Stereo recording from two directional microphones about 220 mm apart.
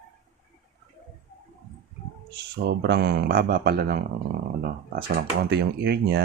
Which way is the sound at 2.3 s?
50° right (ahead or behind).